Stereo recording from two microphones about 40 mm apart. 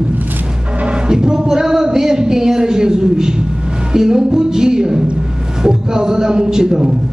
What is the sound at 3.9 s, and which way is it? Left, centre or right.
A man's voice, centre.